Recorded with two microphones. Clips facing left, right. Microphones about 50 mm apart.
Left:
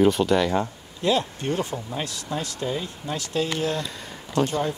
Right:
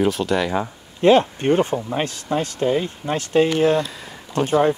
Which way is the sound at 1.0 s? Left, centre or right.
Right.